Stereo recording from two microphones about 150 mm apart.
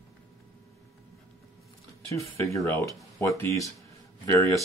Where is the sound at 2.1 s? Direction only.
20° left (ahead or behind).